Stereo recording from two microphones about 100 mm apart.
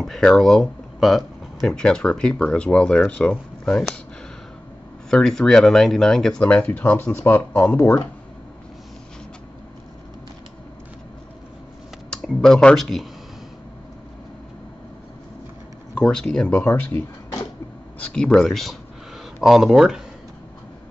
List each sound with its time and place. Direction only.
0.0 s speech: 5° left (ahead or behind)
5.1 s speech: 5° left (ahead or behind)
12.1 s speech: 10° left (ahead or behind)
16.0 s speech: 5° left (ahead or behind)
17.9 s speech: 10° left (ahead or behind)